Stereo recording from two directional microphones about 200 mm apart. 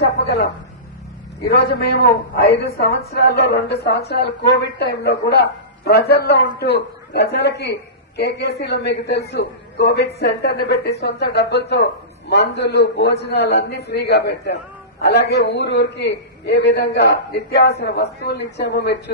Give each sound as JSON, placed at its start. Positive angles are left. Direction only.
{"t": 0.0, "sound": "a woman's voice", "side_deg": 50}
{"t": 1.5, "sound": "a woman's voice", "side_deg": 50}